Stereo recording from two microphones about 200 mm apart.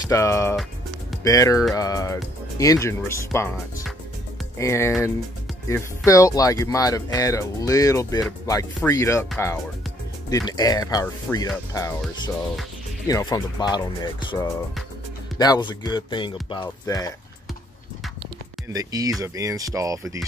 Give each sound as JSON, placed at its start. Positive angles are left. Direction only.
{"t": 0.0, "sound": "speech", "side_deg": 15}
{"t": 10.3, "sound": "speech", "side_deg": 20}
{"t": 13.0, "sound": "speech", "side_deg": 20}
{"t": 18.7, "sound": "speech", "side_deg": -20}